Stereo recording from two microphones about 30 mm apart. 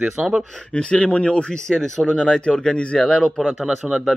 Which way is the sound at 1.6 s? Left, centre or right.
Left.